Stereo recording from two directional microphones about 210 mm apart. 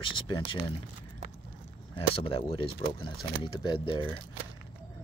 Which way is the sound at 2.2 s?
25° left (ahead or behind).